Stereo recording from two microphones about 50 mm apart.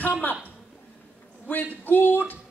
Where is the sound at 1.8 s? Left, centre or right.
Left.